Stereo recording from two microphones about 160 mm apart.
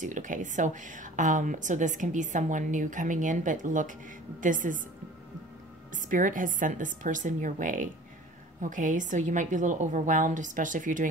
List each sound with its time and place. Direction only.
0.0 s a woman's voice: 50° right (ahead or behind)
6.0 s a woman's voice: 55° right (ahead or behind)